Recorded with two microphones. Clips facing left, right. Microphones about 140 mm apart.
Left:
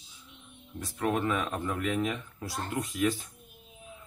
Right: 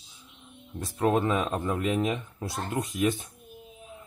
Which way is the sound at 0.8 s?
30° right (ahead or behind).